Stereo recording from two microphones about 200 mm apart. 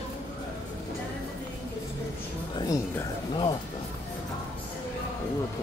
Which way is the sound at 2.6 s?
20° left (ahead or behind).